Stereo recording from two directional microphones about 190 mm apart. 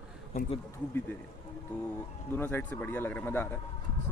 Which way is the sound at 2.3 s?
10° left (ahead or behind).